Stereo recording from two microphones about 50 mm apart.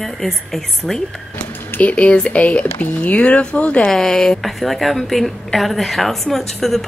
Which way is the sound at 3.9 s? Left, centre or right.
Centre.